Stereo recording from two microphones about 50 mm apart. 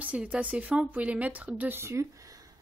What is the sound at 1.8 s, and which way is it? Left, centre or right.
Speech, right.